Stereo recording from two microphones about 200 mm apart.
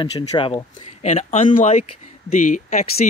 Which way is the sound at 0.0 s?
25° left (ahead or behind).